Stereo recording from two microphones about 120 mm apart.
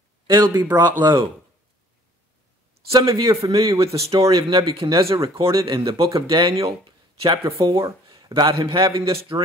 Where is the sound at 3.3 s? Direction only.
50° right (ahead or behind).